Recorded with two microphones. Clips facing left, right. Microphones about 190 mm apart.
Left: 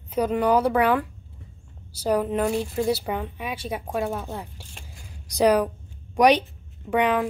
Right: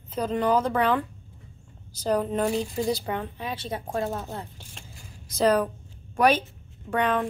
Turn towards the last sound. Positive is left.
turn(degrees=10)  # may be behind; listen again after turning